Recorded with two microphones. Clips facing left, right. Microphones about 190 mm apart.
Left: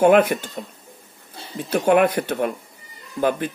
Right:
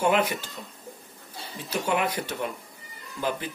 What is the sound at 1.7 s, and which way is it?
Speech, 55° left (ahead or behind).